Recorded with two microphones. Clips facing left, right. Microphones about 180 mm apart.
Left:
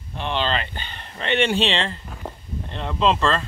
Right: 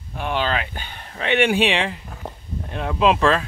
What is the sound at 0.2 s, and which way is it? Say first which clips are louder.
Speech: right 1 dB; 10° right (ahead or behind).